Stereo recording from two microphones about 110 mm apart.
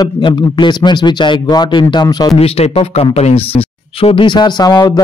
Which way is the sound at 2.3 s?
65° left (ahead or behind).